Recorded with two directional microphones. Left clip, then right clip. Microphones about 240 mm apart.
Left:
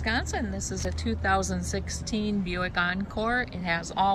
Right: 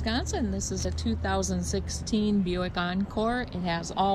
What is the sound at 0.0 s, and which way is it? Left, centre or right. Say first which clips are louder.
Speech: left 2 dB; centre.